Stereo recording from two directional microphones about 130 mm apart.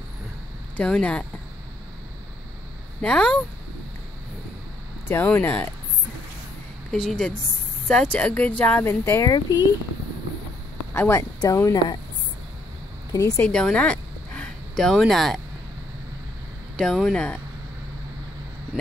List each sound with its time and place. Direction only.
0.7 s speech: 10° left (ahead or behind)
3.0 s speech: 5° left (ahead or behind)
5.0 s speech: 15° left (ahead or behind)
6.9 s speech: 5° left (ahead or behind); by 9.6 s 25° left (ahead or behind)
10.9 s speech: 20° left (ahead or behind)
13.4 s speech: 5° left (ahead or behind)
16.7 s speech: 5° left (ahead or behind)